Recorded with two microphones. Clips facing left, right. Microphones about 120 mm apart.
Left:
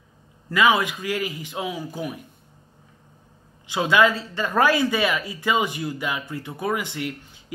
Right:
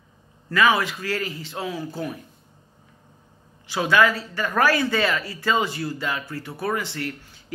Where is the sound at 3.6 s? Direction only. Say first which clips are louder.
Left 1 dB; 20° left (ahead or behind).